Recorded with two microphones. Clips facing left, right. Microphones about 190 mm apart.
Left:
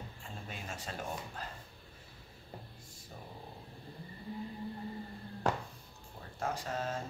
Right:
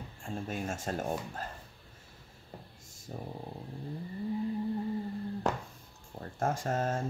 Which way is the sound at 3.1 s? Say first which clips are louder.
Right 8 dB; 45° right (ahead or behind).